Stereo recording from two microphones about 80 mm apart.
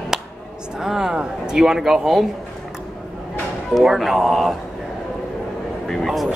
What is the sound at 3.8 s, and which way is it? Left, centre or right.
Speech, centre.